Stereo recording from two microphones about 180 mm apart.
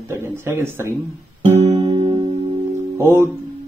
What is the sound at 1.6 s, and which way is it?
Music, 30° right (ahead or behind).